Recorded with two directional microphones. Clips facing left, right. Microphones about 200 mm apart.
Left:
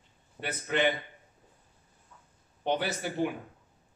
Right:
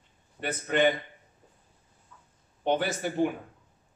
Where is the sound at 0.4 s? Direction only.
50° right (ahead or behind).